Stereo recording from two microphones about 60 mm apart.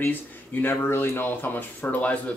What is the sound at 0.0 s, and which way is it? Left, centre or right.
Speech, left.